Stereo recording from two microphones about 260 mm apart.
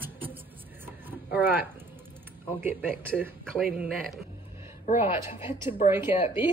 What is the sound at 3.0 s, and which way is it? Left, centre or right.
Speech, centre.